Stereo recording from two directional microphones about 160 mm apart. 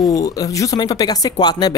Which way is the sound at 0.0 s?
20° left (ahead or behind).